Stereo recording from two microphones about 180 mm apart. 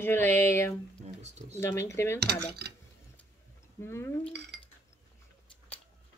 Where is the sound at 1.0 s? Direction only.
35° right (ahead or behind).